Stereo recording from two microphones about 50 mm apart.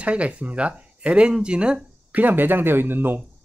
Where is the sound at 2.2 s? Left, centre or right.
Right.